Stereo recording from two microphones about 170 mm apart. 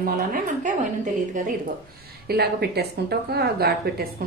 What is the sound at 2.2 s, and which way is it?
Speech, 70° right (ahead or behind).